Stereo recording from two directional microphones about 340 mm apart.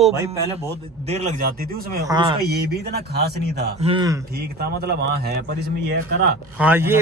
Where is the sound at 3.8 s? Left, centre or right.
Centre.